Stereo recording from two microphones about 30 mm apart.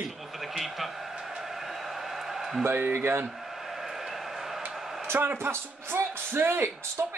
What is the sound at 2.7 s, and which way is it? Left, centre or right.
Speech, right.